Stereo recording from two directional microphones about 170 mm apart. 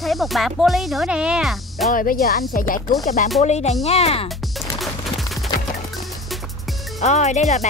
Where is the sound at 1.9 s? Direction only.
55° left (ahead or behind).